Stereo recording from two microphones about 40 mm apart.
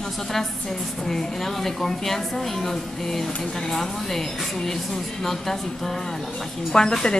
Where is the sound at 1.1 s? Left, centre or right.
Centre.